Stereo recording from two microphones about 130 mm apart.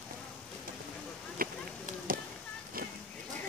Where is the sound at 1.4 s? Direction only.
90° right.